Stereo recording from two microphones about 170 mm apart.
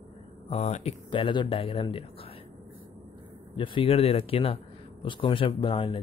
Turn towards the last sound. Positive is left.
turn(degrees=30)  # may be behind; listen again after turning